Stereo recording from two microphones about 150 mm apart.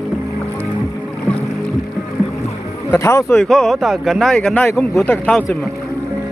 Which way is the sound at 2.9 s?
20° left (ahead or behind).